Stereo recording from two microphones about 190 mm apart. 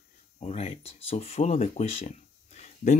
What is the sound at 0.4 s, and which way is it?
Speech, 35° left (ahead or behind).